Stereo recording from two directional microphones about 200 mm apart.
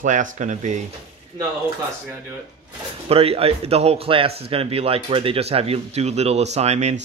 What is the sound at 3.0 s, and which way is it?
Speech, 30° right (ahead or behind).